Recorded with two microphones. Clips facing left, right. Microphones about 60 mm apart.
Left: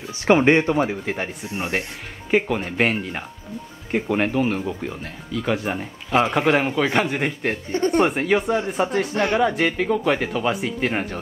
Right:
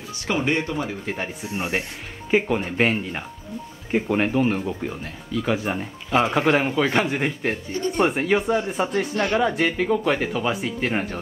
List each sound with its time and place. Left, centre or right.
0.3 s speech: left
1.0 s speech: centre
7.7 s speech: left
8.0 s speech: centre
9.1 s speech: left
9.4 s speech: centre